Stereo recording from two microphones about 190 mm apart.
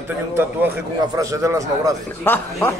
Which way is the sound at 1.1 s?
15° right (ahead or behind).